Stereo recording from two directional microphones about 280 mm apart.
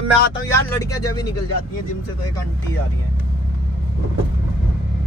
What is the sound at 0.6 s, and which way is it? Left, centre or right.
Speech, centre.